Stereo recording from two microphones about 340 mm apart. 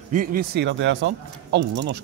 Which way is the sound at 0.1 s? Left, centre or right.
Right.